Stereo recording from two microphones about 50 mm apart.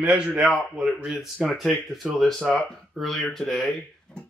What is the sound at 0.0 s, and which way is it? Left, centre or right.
Speech, right.